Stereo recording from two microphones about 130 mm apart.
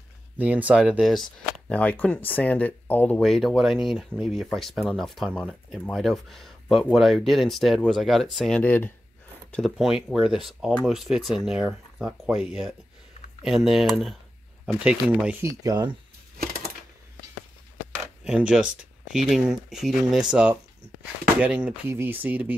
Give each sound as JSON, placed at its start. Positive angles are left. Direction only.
{"t": 0.4, "sound": "speech", "side_deg": -10}
{"t": 1.7, "sound": "speech", "side_deg": 10}
{"t": 3.2, "sound": "speech", "side_deg": 0}
{"t": 9.5, "sound": "speech", "side_deg": 0}
{"t": 15.4, "sound": "speech", "side_deg": -25}
{"t": 18.2, "sound": "speech", "side_deg": -5}